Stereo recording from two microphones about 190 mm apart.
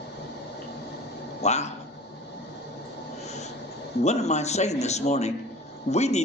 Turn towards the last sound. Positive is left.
turn(degrees=35)  # may be behind; listen again after turning